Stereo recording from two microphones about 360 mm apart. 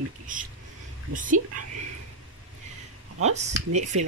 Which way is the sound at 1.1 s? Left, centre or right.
Right.